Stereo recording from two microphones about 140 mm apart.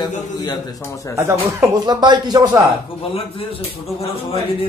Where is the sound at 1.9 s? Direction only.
30° right (ahead or behind).